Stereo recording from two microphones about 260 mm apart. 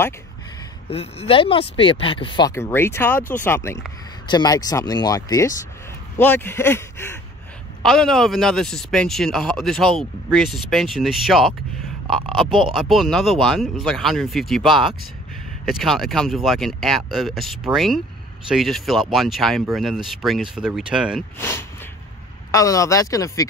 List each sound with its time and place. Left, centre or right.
0.8 s speech: left; by 11.5 s centre
12.4 s speech: centre
12.7 s speech: centre
14.7 s speech: centre
15.7 s speech: centre
21.4 s speech: centre